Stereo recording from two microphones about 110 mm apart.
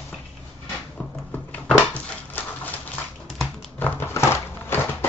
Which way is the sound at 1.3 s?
10° left (ahead or behind).